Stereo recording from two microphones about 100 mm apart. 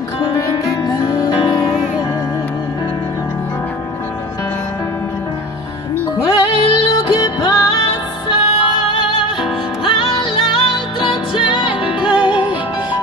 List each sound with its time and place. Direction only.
0.8 s music: 50° left (ahead or behind)
6.6 s music: 50° left (ahead or behind)
8.3 s music: 60° left (ahead or behind)
12.0 s music: 10° right (ahead or behind)